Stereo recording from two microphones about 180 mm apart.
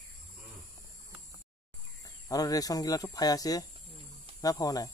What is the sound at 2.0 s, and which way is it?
Speech, 20° left (ahead or behind).